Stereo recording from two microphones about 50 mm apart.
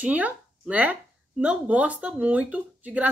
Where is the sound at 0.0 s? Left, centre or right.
Right.